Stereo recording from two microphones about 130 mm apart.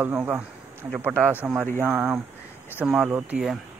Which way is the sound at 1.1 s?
10° left (ahead or behind).